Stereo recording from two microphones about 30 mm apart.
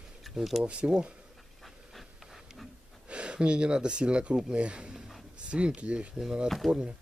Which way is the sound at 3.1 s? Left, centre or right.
Right.